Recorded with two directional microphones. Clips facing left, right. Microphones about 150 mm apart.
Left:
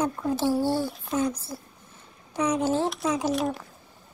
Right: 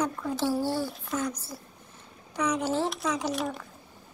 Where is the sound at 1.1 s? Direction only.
25° left (ahead or behind).